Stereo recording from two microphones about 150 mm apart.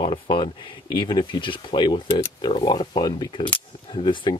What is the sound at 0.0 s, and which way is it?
Speech, 35° left (ahead or behind).